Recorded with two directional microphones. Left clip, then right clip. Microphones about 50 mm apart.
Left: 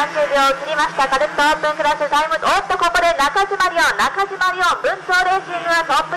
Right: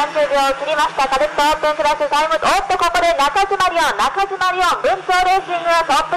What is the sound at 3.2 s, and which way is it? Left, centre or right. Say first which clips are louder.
A man's voice: right 1 dB; centre.